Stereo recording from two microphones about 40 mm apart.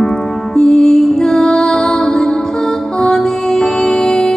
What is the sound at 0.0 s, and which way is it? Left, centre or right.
Music, centre.